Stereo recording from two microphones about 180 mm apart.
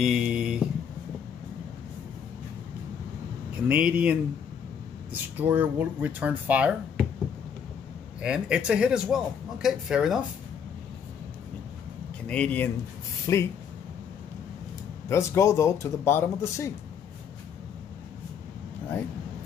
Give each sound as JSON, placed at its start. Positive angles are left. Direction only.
{"t": 0.0, "sound": "a sound", "side_deg": -5}
{"t": 3.6, "sound": "speech", "side_deg": -10}
{"t": 5.4, "sound": "speech", "side_deg": -10}
{"t": 8.2, "sound": "a man's voice", "side_deg": -5}
{"t": 12.3, "sound": "speech", "side_deg": 5}
{"t": 15.0, "sound": "speech", "side_deg": 15}